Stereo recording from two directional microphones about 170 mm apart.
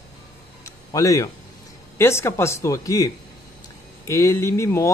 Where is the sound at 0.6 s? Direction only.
20° left (ahead or behind).